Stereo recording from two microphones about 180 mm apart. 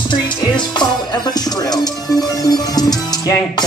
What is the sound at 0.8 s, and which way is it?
Speech, 20° left (ahead or behind).